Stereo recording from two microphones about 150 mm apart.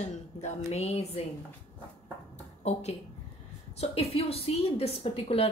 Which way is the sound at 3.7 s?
45° left (ahead or behind).